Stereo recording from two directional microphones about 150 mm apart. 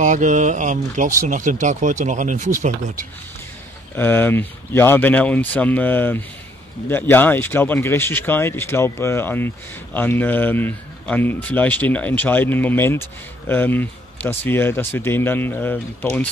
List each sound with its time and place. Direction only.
0.0 s speech: 60° right (ahead or behind)
3.9 s a man's voice: 15° left (ahead or behind)